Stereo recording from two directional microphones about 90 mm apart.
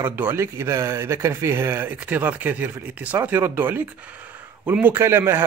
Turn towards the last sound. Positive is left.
turn(degrees=-25)  # may be behind; listen again after turning